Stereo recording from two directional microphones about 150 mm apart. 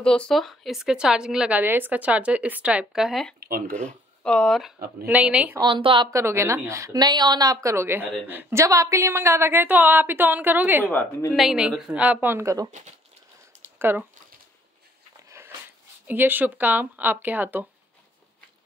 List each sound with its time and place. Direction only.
0.0 s a woman's voice: 5° left (ahead or behind)
3.3 s speech: 80° right
3.7 s speech: 5° left (ahead or behind)
5.0 s a woman's voice: 10° right (ahead or behind)
5.6 s speech: 35° right (ahead or behind)
6.0 s a woman's voice: 20° right (ahead or behind)
10.9 s a woman's voice: 15° left (ahead or behind)
11.3 s a woman's voice: 5° right (ahead or behind)
13.7 s speech: 15° right (ahead or behind)
15.2 s dog: 20° right (ahead or behind)
16.1 s a woman's voice: 10° right (ahead or behind)